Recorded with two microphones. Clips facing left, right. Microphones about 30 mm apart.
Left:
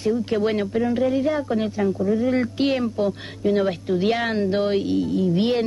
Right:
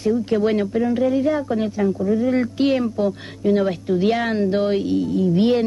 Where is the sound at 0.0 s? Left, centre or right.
Centre.